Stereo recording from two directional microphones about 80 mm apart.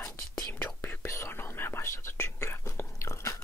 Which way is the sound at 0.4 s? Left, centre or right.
Centre.